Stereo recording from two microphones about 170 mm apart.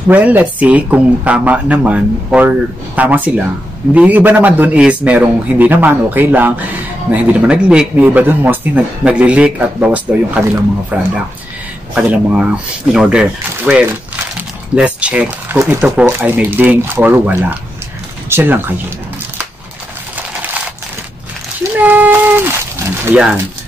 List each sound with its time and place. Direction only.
0.1 s a man's voice: 10° right (ahead or behind)
21.7 s a sound: 10° right (ahead or behind)
23.0 s a man's voice: 10° right (ahead or behind)